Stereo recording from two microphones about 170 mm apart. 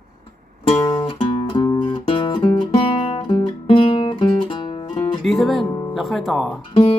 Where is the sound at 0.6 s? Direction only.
30° left (ahead or behind).